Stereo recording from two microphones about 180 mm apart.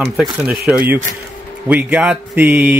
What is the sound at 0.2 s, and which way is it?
Speech, 5° right (ahead or behind).